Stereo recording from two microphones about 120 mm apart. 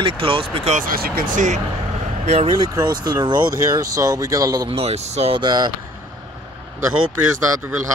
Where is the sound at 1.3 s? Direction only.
90° right.